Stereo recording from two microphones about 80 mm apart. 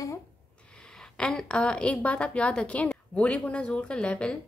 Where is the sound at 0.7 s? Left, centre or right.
Centre.